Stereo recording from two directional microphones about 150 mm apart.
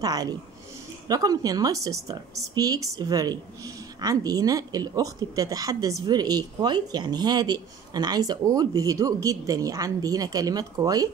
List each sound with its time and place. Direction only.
0.0 s speech: 25° right (ahead or behind)